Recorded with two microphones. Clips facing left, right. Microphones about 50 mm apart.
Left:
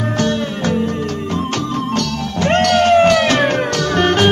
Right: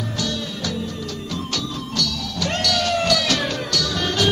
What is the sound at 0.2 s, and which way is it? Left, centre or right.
Music, left.